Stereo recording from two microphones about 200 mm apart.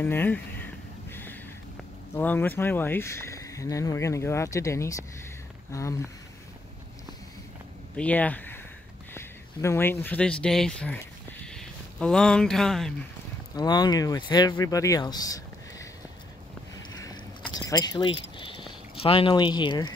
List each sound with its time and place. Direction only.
0.0 s speech: 10° left (ahead or behind)
1.1 s a sound: 10° left (ahead or behind)
2.1 s speech: 10° left (ahead or behind)
7.9 s speech: 5° left (ahead or behind)
13.6 s speech: 20° left (ahead or behind)
16.7 s boat: 20° left (ahead or behind)
17.6 s speech: 20° left (ahead or behind)